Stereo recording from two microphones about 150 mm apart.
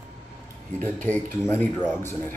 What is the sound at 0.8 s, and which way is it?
Speech, 10° left (ahead or behind).